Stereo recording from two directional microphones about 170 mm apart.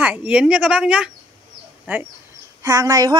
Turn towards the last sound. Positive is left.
turn(degrees=-20)  # may be behind; listen again after turning